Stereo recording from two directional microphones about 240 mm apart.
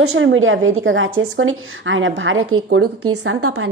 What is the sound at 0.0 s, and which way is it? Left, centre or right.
A woman's voice, right.